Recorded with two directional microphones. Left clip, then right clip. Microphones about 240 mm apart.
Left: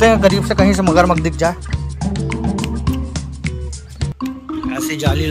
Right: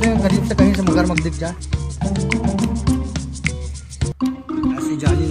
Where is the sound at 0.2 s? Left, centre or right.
Centre.